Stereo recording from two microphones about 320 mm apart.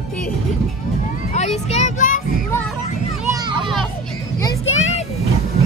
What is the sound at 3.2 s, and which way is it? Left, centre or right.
Children playing, centre.